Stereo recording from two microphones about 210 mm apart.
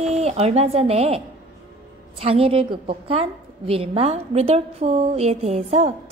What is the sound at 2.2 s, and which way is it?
A woman's voice, 30° right (ahead or behind).